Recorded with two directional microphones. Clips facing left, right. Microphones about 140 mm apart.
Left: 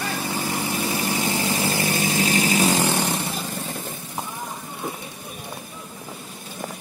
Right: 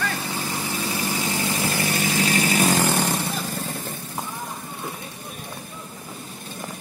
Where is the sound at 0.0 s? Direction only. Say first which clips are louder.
Left 1 dB; 15° left (ahead or behind).